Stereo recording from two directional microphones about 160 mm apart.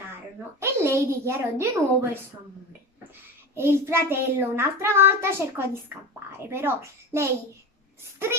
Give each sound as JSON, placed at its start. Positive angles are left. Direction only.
{"t": 0.1, "sound": "child singing", "side_deg": -15}
{"t": 3.5, "sound": "child singing", "side_deg": -15}